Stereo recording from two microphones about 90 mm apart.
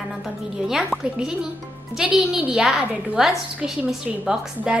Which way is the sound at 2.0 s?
10° right (ahead or behind).